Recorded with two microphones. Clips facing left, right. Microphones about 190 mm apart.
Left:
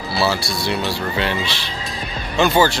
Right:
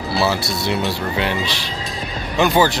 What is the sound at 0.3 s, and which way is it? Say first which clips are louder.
Speech: right 1 dB; 20° right (ahead or behind).